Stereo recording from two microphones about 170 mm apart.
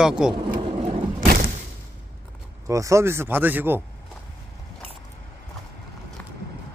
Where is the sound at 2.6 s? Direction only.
20° right (ahead or behind).